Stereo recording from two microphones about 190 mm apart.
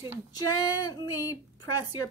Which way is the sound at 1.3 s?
20° left (ahead or behind).